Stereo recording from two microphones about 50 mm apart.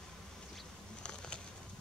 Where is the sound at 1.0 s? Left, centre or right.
Centre.